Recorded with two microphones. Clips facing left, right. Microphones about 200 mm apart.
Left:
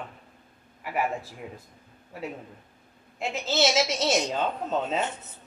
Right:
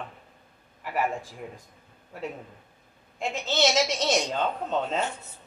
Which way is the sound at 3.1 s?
5° left (ahead or behind).